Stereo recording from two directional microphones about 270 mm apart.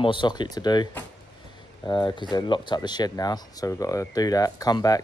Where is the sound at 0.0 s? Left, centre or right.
Centre.